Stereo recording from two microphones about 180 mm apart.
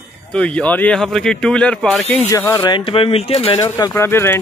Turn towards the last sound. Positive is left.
turn(degrees=10)  # may be behind; listen again after turning